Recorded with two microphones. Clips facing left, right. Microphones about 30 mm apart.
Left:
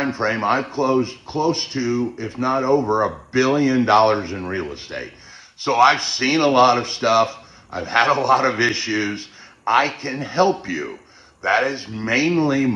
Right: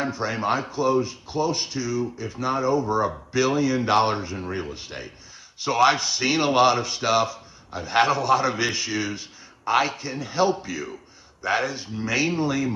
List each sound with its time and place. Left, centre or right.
0.0 s speech: left